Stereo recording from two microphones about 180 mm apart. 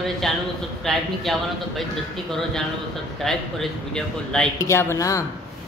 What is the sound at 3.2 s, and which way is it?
Speech, centre (ahead or behind).